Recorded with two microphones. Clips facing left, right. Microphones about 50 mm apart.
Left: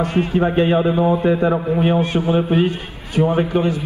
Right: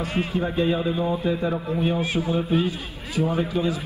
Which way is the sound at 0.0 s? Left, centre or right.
Left.